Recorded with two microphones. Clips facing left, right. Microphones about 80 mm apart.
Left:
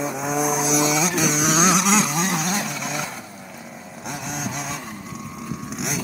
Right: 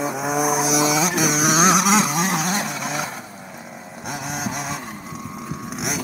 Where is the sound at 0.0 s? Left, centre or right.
Centre.